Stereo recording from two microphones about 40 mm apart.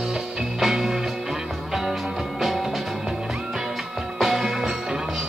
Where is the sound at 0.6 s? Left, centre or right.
Centre.